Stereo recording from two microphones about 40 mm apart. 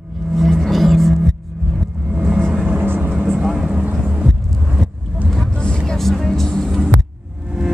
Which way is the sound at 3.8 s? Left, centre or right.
Right.